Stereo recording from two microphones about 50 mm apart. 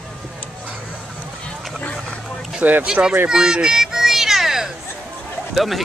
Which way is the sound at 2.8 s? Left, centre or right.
Right.